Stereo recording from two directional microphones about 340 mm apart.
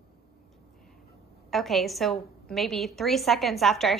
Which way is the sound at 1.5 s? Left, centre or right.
Centre.